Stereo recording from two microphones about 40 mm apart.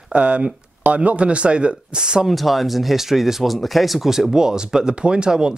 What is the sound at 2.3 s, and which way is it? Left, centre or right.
Speech, centre.